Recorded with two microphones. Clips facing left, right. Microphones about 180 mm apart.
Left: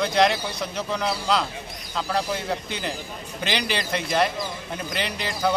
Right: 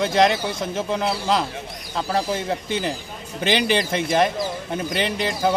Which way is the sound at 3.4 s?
20° right (ahead or behind).